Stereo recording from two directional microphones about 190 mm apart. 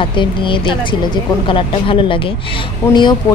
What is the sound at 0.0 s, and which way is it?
A woman's voice, 25° left (ahead or behind).